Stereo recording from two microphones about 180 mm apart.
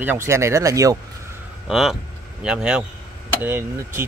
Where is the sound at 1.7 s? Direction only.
Centre (ahead or behind).